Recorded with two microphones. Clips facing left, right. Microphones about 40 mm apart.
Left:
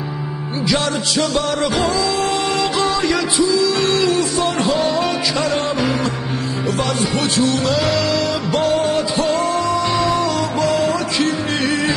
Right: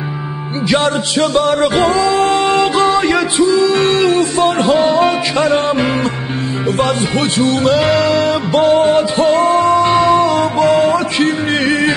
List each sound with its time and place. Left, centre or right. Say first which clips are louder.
0.7 s music: right 5 dB; right